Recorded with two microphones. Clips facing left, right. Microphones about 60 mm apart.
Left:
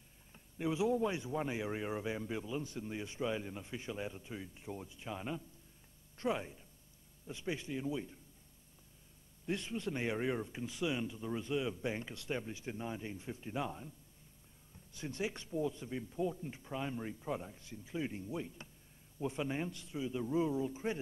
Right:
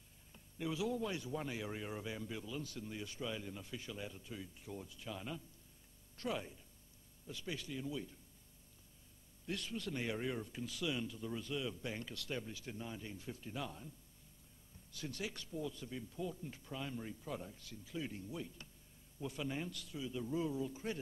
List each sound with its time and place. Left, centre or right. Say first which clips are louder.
0.3 s a man's voice: left 5 dB; left
9.5 s a man's voice: left 4 dB; left